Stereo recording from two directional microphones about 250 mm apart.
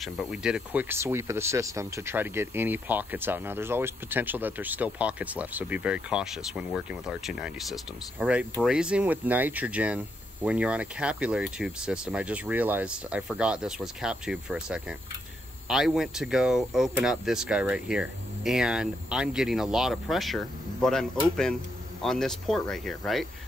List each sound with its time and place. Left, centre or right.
0.0 s speech: centre